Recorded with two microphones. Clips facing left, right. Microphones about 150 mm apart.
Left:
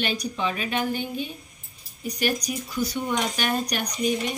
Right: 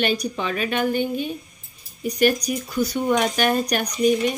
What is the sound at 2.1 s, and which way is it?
Speech, 55° right (ahead or behind).